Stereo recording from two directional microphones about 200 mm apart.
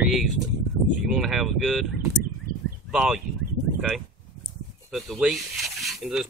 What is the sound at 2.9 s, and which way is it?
Speech, 5° right (ahead or behind).